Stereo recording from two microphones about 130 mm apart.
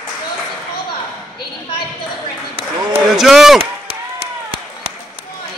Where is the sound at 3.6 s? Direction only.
50° right (ahead or behind).